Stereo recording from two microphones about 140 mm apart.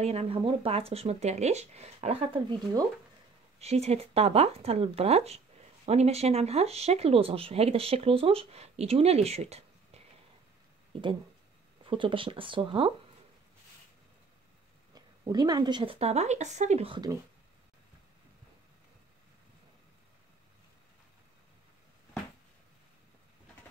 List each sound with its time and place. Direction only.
0.0 s speech: 50° right (ahead or behind)
2.6 s speech: 30° right (ahead or behind)
3.5 s speech: 50° right (ahead or behind)
10.9 s speech: 35° right (ahead or behind)
15.0 s speech: 30° right (ahead or behind); by 16.9 s 55° right (ahead or behind)